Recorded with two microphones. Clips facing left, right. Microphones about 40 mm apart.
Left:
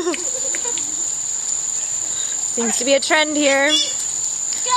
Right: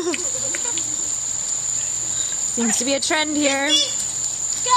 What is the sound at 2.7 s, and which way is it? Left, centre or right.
Speech, centre.